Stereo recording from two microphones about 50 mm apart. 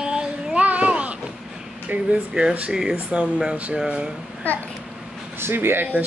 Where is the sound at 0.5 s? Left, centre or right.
Right.